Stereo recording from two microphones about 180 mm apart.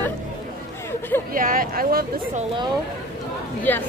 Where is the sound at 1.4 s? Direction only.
50° right (ahead or behind).